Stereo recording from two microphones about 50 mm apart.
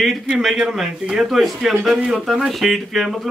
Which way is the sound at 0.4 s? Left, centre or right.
Centre.